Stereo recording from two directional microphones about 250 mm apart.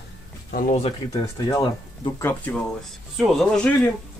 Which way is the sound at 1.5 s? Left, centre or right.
Centre.